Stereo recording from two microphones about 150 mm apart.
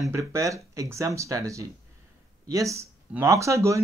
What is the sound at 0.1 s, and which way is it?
Speech, 20° right (ahead or behind).